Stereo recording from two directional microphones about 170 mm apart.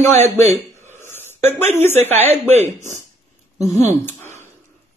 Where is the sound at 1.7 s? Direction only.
15° left (ahead or behind).